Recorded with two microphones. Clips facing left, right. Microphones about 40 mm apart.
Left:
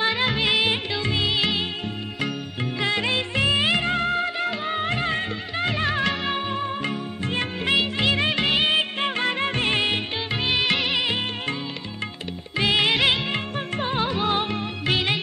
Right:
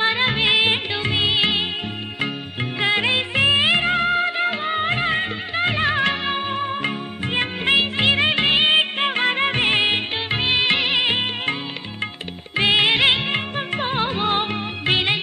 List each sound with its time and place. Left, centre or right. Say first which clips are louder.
0.0 s music: right 3 dB; right
2.8 s music: right 4 dB; right
12.5 s music: right 3 dB; right